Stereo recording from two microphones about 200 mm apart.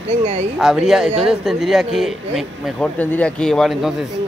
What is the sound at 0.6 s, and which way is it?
Speech, centre (ahead or behind).